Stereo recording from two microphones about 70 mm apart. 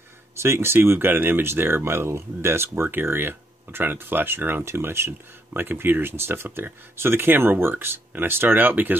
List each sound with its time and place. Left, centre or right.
0.4 s speech: right